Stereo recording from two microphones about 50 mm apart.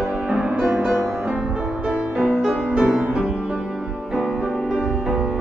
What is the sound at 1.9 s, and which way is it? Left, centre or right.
Music, centre.